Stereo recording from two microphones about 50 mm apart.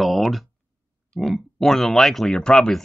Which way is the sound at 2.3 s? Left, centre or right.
Centre.